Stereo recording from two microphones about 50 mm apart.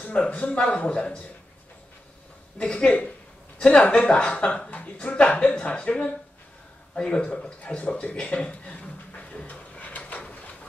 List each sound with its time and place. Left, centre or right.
0.0 s speech: left
2.6 s speech: centre